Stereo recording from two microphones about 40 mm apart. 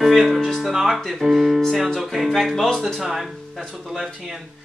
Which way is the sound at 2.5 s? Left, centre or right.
Centre.